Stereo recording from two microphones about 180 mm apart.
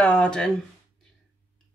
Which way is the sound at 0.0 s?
5° left (ahead or behind).